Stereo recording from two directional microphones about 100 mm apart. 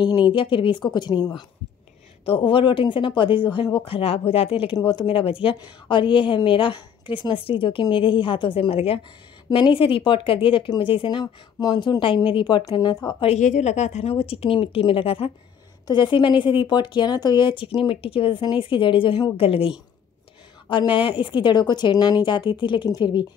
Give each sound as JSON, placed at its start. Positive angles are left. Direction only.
{"t": 0.0, "sound": "a woman's voice", "side_deg": 50}
{"t": 2.2, "sound": "speech", "side_deg": 60}
{"t": 4.7, "sound": "speech", "side_deg": 50}
{"t": 9.5, "sound": "a woman's voice", "side_deg": 60}
{"t": 14.0, "sound": "speech", "side_deg": 80}
{"t": 15.9, "sound": "a woman's voice", "side_deg": 50}
{"t": 19.3, "sound": "speech", "side_deg": 65}
{"t": 20.6, "sound": "a woman's voice", "side_deg": 55}